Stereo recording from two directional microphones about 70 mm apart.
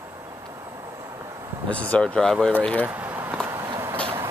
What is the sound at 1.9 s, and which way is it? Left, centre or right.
Speech, centre.